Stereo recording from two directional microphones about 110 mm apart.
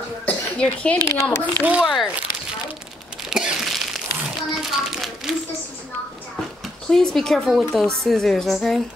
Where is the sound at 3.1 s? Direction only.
5° right (ahead or behind).